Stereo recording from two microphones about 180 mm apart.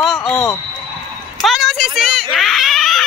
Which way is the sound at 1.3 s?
Centre (ahead or behind).